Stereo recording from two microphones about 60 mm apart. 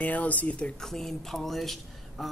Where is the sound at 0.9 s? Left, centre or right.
Centre.